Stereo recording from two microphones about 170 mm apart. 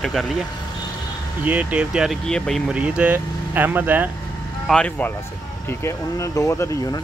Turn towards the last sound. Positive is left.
turn(degrees=15)  # may be behind; listen again after turning